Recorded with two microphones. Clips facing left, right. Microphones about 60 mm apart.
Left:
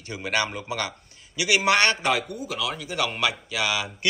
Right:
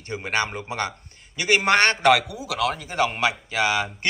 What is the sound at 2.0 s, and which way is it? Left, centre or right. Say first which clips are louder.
Speech: right 6 dB; right.